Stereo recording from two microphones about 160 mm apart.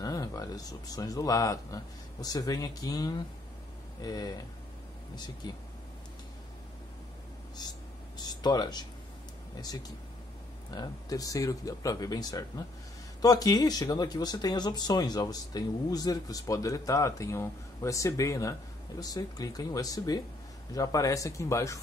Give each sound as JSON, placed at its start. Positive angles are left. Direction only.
{"t": 0.0, "sound": "speech", "side_deg": 20}
{"t": 7.6, "sound": "speech", "side_deg": 25}